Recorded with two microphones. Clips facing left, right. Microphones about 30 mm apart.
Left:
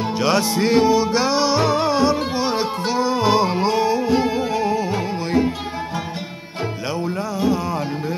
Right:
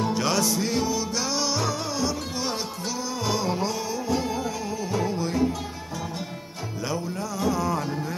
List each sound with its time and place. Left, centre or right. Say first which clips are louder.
0.0 s music: left 5 dB; left
7.3 s music: left 3 dB; left